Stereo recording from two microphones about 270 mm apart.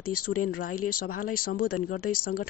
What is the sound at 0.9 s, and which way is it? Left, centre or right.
Speech, left.